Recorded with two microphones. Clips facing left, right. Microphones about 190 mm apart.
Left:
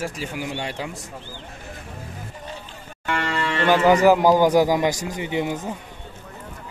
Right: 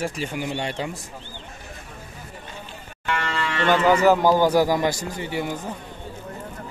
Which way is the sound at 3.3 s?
10° left (ahead or behind).